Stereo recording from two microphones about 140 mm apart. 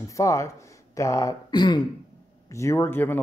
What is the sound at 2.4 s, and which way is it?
Speech, 20° left (ahead or behind).